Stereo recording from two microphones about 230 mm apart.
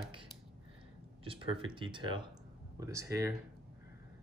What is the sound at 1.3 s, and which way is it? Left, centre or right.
Speech, right.